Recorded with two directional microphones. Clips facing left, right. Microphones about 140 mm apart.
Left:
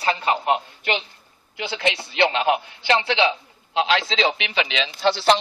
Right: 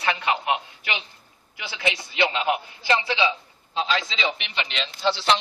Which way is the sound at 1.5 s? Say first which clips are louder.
Left 4 dB; 60° left (ahead or behind).